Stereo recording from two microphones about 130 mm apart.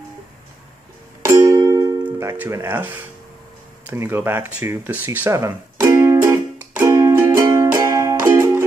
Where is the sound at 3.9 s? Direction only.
15° right (ahead or behind).